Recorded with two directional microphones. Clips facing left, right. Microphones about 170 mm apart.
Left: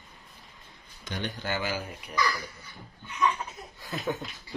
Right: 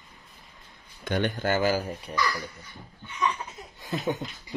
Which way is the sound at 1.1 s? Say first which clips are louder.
Right 7 dB; 55° right (ahead or behind).